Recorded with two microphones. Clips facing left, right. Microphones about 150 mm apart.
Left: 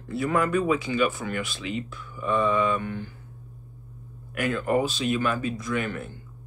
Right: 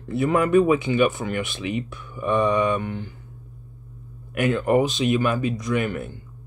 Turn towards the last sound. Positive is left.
turn(degrees=-15)  # may be behind; listen again after turning